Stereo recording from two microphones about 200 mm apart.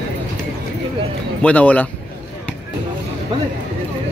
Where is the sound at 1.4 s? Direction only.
5° left (ahead or behind).